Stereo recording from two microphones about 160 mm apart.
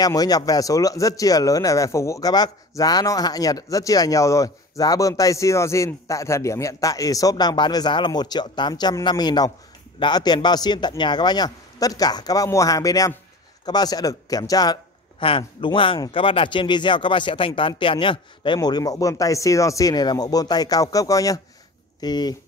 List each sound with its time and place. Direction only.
0.0 s speech: 25° left (ahead or behind)